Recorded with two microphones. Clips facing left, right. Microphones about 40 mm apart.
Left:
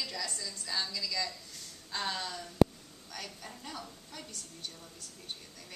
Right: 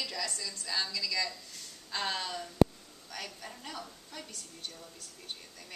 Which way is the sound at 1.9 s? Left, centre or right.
Right.